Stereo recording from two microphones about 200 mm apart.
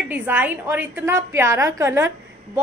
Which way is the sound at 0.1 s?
10° right (ahead or behind).